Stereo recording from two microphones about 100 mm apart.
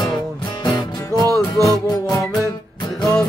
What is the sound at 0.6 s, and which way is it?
Music, 40° left (ahead or behind).